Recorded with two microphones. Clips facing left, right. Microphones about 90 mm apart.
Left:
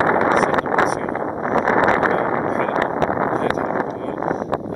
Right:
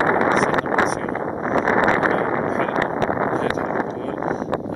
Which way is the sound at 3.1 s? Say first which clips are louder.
Left 1 dB; 45° left (ahead or behind).